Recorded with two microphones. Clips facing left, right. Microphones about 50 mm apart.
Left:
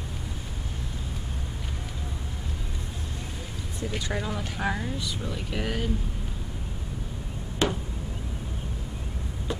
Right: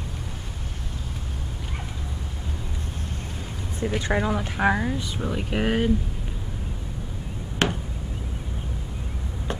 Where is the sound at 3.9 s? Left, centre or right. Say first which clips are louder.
Right 7 dB; right.